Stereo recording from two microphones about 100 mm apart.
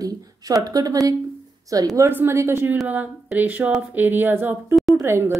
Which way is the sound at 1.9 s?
25° right (ahead or behind).